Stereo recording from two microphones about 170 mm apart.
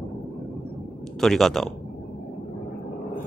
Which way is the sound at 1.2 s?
Centre (ahead or behind).